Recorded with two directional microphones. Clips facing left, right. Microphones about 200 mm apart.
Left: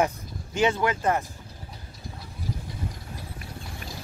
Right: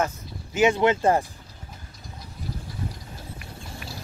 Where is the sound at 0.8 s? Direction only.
25° right (ahead or behind).